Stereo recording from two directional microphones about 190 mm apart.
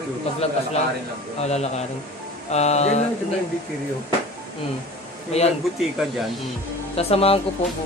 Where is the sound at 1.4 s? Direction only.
35° left (ahead or behind).